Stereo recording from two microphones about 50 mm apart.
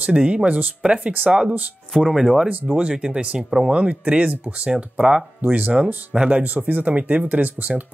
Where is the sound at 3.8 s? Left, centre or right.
Right.